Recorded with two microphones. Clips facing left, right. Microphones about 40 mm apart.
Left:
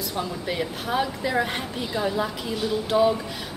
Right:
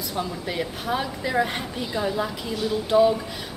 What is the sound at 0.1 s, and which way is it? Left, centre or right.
A woman's voice, centre.